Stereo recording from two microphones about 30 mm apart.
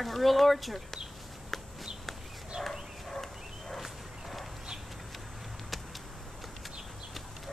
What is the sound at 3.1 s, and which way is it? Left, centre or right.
Dog, centre.